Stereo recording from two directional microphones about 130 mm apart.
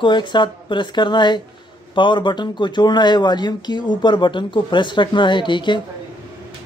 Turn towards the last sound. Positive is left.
turn(degrees=40)  # may be behind; listen again after turning